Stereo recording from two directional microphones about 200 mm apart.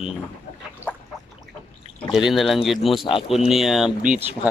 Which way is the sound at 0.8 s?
10° right (ahead or behind).